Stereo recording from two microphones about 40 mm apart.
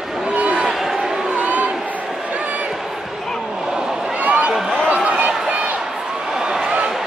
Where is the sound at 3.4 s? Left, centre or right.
Centre.